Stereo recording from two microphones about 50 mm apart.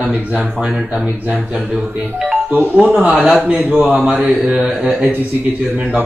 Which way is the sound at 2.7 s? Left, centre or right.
Centre.